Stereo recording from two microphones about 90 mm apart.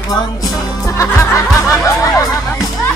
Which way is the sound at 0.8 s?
40° left (ahead or behind).